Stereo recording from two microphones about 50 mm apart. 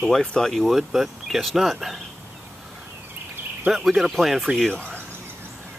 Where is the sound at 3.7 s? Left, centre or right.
Centre.